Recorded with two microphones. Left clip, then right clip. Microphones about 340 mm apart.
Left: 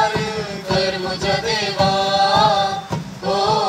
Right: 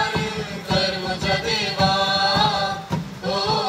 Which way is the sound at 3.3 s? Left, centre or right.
Left.